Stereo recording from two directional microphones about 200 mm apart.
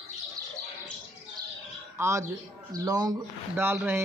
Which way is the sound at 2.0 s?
15° right (ahead or behind).